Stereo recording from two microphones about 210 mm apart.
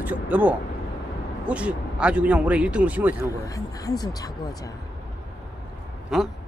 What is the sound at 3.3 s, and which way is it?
Speech, 15° left (ahead or behind).